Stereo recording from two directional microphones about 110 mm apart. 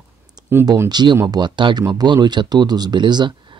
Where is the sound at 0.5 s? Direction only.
20° right (ahead or behind).